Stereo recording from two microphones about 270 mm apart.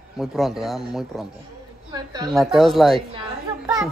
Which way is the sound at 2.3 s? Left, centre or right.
Centre.